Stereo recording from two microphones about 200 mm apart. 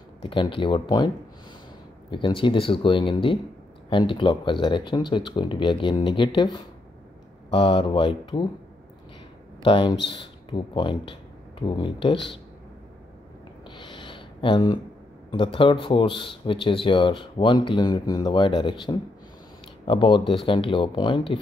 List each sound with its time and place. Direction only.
0.2 s speech: 25° left (ahead or behind)
9.6 s speech: 25° left (ahead or behind)
13.7 s a sound: 25° left (ahead or behind)
15.3 s speech: 25° left (ahead or behind)